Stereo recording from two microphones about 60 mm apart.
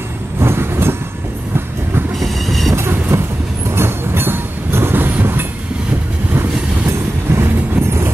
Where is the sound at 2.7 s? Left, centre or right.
Right.